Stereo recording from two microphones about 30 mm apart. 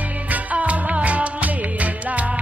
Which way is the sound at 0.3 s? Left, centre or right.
Right.